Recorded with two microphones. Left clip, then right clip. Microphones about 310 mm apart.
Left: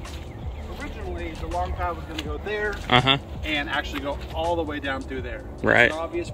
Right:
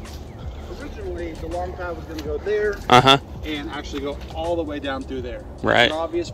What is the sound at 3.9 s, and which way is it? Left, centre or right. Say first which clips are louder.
Speech: right 1 dB; centre.